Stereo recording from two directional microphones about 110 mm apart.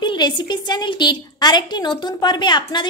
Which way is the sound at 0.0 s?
45° left (ahead or behind).